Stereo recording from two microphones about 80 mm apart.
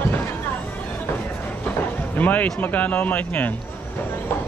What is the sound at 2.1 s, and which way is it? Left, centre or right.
Speech, left.